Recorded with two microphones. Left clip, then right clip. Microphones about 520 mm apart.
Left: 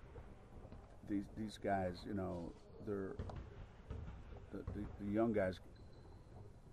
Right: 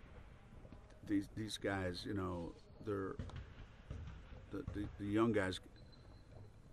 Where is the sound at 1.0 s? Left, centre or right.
Right.